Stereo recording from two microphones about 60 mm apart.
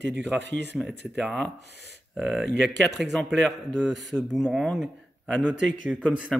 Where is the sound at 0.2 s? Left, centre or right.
Centre.